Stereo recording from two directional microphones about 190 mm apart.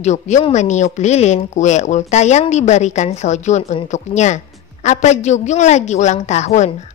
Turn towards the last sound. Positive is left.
turn(degrees=40)  # may be behind; listen again after turning